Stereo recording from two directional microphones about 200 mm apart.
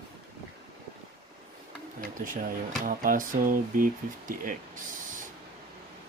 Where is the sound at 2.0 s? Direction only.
45° right (ahead or behind).